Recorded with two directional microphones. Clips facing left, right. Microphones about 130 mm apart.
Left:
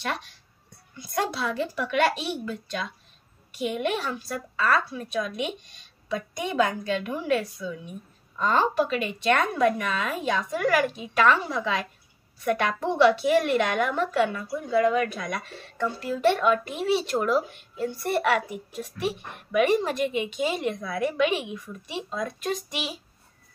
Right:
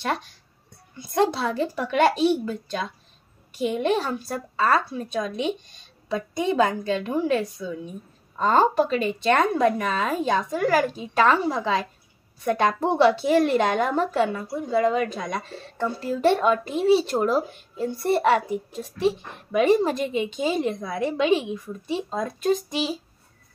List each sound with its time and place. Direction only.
1.1 s a woman's voice: 30° right (ahead or behind)